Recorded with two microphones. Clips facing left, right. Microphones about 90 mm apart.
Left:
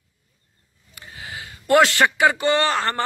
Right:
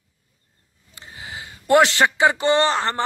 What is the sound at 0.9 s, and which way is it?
A man's voice, 25° right (ahead or behind).